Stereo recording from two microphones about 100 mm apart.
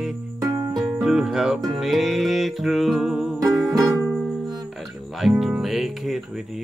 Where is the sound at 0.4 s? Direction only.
35° right (ahead or behind).